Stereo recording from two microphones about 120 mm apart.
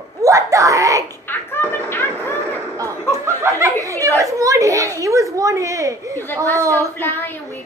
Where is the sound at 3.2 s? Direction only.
25° right (ahead or behind).